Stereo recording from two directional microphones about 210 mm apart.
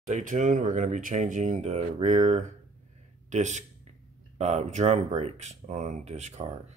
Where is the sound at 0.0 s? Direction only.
40° right (ahead or behind).